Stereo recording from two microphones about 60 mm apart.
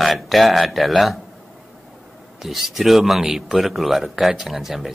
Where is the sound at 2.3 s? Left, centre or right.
Centre.